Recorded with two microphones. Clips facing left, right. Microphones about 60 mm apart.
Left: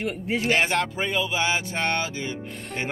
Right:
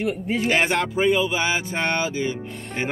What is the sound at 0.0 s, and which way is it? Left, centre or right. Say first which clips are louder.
Speech: right 3 dB; centre.